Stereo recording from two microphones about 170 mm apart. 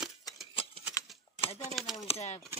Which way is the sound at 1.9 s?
40° left (ahead or behind).